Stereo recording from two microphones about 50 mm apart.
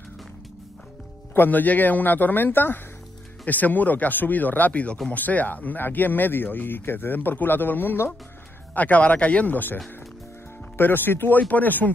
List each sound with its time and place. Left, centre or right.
1.3 s speech: left
8.7 s speech: left
10.8 s speech: left